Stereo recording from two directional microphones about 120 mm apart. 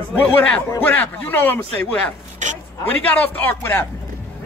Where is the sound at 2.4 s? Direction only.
90° right.